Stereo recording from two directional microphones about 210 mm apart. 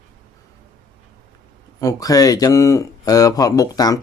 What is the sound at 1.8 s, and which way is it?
Speech, 15° left (ahead or behind).